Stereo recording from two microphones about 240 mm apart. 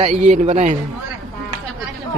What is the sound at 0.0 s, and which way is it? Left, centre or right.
Speech, right.